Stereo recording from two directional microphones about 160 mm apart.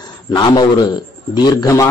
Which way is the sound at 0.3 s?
30° left (ahead or behind).